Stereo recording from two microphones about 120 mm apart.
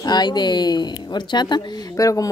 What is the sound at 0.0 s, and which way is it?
Speech, 35° left (ahead or behind).